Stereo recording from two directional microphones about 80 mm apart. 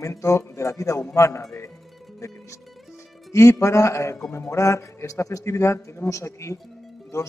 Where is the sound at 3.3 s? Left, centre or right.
Left.